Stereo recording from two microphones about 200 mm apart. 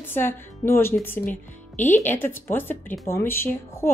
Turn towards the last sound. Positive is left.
turn(degrees=10)  # may be behind; listen again after turning